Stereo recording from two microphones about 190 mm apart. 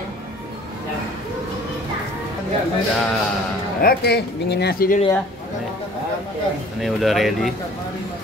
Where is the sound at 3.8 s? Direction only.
60° left (ahead or behind).